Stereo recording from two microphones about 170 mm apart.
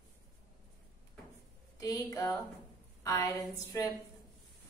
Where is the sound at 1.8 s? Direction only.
20° left (ahead or behind).